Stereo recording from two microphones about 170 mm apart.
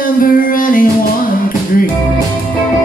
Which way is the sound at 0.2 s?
55° left (ahead or behind).